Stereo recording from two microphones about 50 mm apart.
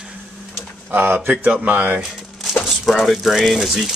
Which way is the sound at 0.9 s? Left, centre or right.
Right.